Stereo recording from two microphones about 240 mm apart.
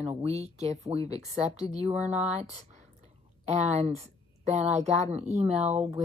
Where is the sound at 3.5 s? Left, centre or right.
Right.